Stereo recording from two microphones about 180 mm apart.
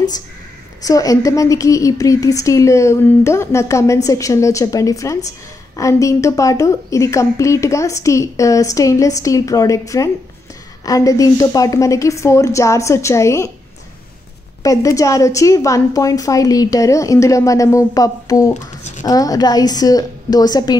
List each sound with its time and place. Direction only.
0.8 s a woman's voice: 20° left (ahead or behind)
14.6 s a woman's voice: 20° left (ahead or behind)
18.5 s speech: 40° left (ahead or behind)
19.0 s a woman's voice: 20° left (ahead or behind)